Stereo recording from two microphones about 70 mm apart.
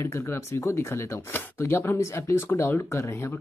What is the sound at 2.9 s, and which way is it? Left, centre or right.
Speech, left.